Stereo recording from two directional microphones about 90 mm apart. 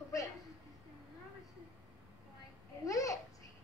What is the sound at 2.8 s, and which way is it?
Babbling, 40° left (ahead or behind).